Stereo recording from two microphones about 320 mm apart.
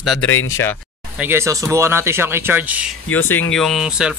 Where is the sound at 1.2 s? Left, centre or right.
Centre.